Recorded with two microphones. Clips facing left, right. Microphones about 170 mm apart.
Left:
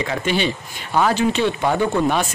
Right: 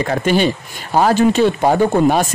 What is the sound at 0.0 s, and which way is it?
Speech, 45° right (ahead or behind).